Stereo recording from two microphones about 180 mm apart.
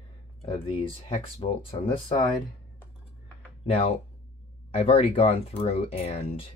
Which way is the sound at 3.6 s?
35° left (ahead or behind).